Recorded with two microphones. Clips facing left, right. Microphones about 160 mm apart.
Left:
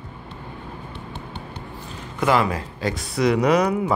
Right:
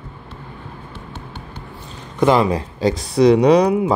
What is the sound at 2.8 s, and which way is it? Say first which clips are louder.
Speech: right 8 dB; 35° right (ahead or behind).